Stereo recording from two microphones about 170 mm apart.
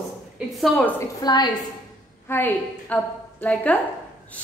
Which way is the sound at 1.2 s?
25° left (ahead or behind).